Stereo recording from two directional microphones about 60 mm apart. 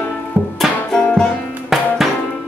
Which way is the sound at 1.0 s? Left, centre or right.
Centre.